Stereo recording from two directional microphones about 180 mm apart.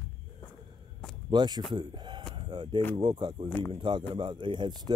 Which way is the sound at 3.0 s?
25° right (ahead or behind).